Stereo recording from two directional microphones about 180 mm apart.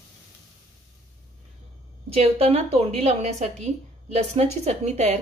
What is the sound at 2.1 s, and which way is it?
A woman's voice, 35° right (ahead or behind).